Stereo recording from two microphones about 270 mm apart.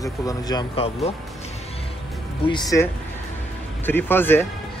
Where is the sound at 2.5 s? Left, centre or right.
Centre.